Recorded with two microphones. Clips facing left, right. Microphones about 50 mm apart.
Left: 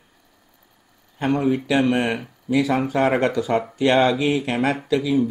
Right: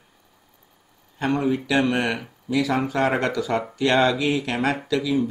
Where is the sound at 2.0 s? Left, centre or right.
Centre.